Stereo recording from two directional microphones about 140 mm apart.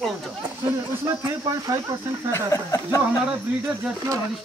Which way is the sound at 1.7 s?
25° right (ahead or behind).